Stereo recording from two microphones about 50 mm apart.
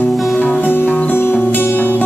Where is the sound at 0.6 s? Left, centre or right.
Left.